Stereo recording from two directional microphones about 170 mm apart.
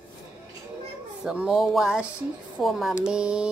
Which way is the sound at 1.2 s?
5° right (ahead or behind).